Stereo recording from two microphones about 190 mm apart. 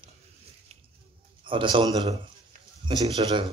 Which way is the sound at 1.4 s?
25° right (ahead or behind).